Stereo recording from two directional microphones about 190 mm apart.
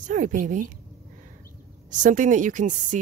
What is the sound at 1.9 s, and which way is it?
A woman's voice, 40° right (ahead or behind).